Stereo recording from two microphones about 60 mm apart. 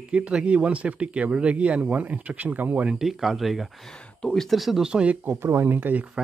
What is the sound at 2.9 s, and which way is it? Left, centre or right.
Speech, centre.